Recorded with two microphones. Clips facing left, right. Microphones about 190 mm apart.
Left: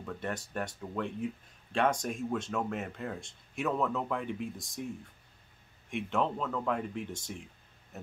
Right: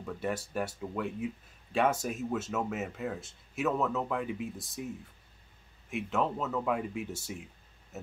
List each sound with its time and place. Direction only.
0.0 s speech: 5° right (ahead or behind)
5.9 s speech: centre (ahead or behind)
7.9 s a sound: 5° right (ahead or behind)